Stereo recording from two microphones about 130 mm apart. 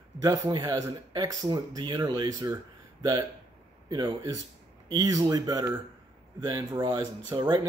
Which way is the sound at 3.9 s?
35° right (ahead or behind).